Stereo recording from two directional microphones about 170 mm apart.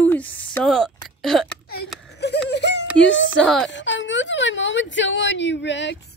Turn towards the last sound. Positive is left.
turn(degrees=90)